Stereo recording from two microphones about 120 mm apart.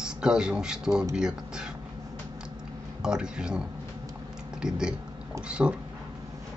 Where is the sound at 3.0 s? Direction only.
5° right (ahead or behind).